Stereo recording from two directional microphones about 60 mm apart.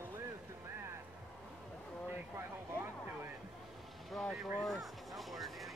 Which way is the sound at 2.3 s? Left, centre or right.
Right.